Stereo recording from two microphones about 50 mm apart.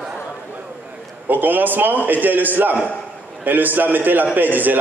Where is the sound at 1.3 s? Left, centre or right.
Right.